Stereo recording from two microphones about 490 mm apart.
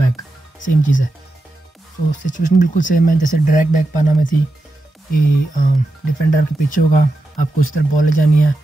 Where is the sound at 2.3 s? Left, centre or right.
Centre.